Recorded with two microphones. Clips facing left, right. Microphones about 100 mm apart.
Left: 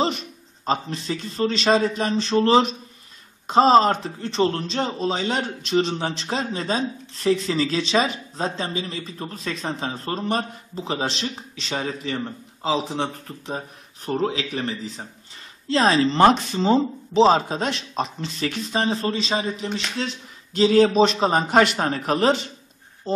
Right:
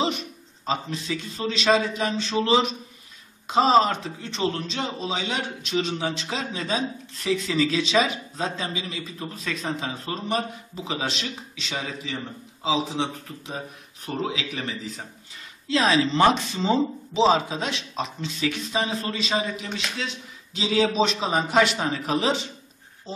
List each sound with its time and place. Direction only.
0.7 s a man's voice: 40° left (ahead or behind)
20.5 s a man's voice: 50° left (ahead or behind)